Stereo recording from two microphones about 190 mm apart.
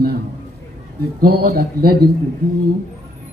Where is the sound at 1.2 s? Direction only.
55° right (ahead or behind).